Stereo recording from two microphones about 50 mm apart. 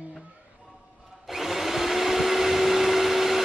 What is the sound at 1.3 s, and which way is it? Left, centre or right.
Vacuum cleaner, centre.